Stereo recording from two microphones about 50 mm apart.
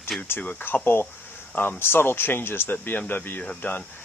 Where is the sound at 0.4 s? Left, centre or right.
Left.